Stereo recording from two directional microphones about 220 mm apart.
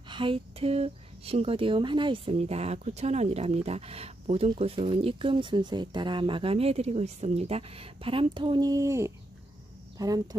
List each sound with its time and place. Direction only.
0.1 s speech: 25° right (ahead or behind)